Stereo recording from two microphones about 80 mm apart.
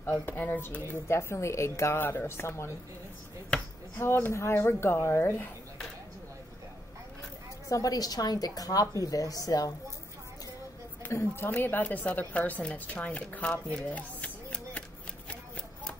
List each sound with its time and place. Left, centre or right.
0.2 s a woman's voice: left
1.0 s a woman's voice: left
4.0 s a woman's voice: left
7.7 s a woman's voice: left
11.0 s a woman's voice: left
13.8 s a sound: centre